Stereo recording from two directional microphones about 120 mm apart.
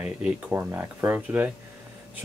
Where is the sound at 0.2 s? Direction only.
15° right (ahead or behind).